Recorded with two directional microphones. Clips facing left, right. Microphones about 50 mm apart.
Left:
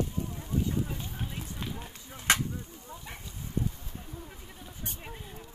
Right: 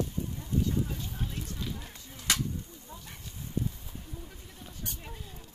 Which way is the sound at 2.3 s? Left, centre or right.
Left.